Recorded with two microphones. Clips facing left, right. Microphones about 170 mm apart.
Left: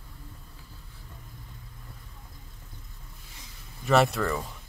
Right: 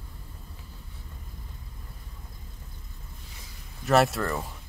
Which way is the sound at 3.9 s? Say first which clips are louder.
Even; centre (ahead or behind).